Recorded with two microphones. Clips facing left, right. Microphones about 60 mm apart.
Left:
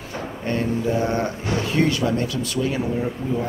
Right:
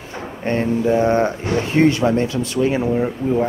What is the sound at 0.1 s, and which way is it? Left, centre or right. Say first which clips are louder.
Speech: right 4 dB; right.